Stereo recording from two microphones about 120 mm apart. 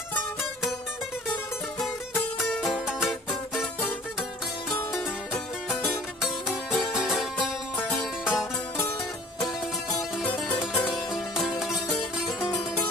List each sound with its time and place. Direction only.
2.6 s music: centre (ahead or behind)
4.9 s music: 5° left (ahead or behind)
9.4 s music: 30° left (ahead or behind)
10.9 s music: centre (ahead or behind)